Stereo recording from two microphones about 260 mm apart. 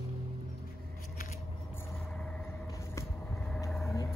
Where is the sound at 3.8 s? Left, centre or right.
Centre.